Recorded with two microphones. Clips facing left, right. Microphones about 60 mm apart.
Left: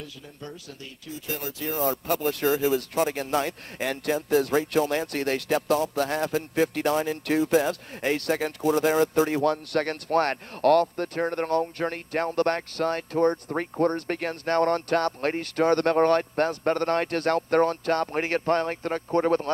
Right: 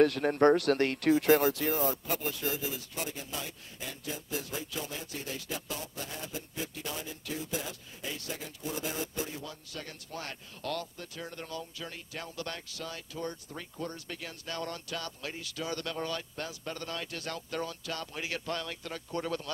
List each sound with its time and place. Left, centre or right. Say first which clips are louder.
0.0 s speech: right 17 dB; right
1.7 s speech: left 5 dB; left